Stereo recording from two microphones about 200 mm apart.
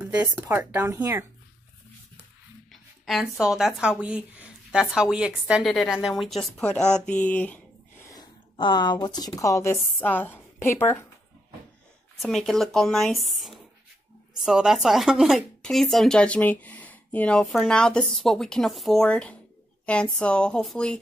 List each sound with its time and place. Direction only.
0.0 s a sound: 5° right (ahead or behind)
0.4 s speech: 10° right (ahead or behind)
2.7 s speech: centre (ahead or behind)
8.1 s speech: 20° left (ahead or behind)
12.2 s a woman's voice: centre (ahead or behind)